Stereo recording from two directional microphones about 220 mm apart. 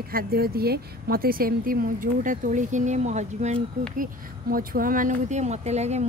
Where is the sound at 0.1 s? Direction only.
45° right (ahead or behind).